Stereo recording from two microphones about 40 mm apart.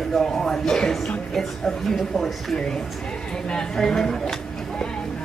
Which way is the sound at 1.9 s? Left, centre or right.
Centre.